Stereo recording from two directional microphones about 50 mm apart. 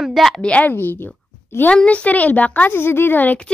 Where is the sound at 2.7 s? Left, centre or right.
Left.